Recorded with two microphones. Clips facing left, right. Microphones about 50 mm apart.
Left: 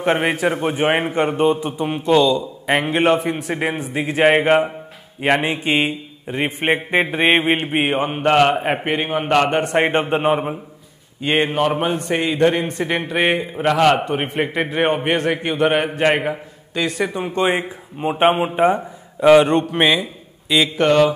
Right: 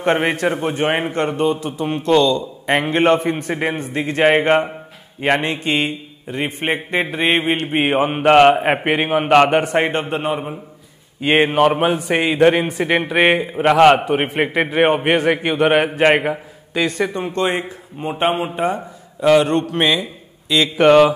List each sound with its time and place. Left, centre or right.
0.0 s a man's voice: centre
7.7 s a man's voice: centre
8.3 s a man's voice: centre
9.2 s mantra: right
9.5 s a man's voice: centre
9.8 s a man's voice: centre
11.1 s a man's voice: centre
11.5 s mantra: right
11.8 s a man's voice: centre
13.7 s mantra: right
14.7 s a man's voice: centre
20.7 s mantra: centre